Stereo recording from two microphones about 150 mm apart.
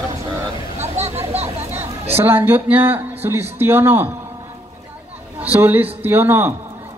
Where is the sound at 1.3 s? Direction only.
45° right (ahead or behind).